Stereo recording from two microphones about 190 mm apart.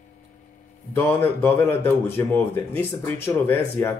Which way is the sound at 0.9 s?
10° left (ahead or behind).